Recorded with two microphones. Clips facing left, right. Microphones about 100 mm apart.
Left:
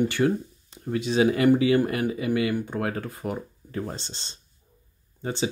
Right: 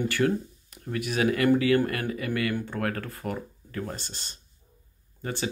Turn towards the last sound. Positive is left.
turn(degrees=20)  # may be behind; listen again after turning